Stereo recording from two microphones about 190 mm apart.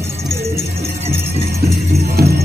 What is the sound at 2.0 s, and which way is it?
Music, 55° right (ahead or behind).